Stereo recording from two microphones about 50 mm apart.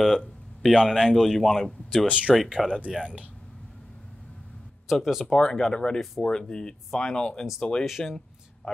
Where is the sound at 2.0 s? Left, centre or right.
Right.